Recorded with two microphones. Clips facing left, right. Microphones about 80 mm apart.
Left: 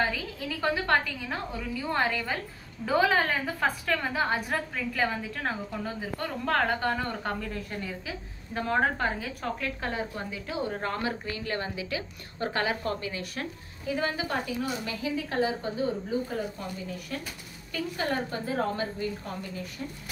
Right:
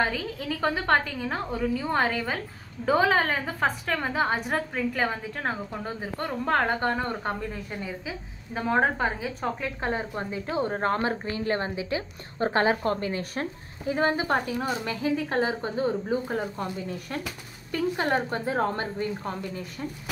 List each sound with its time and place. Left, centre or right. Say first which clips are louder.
0.0 s a woman's voice: right 2 dB; right
18.1 s a woman's voice: right 4 dB; right